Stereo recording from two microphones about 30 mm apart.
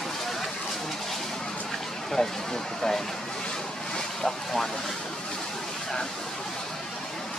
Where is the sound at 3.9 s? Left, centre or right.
Centre.